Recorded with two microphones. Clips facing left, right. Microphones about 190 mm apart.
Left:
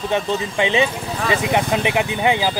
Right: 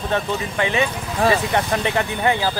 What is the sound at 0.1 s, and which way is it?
Speech, 20° left (ahead or behind).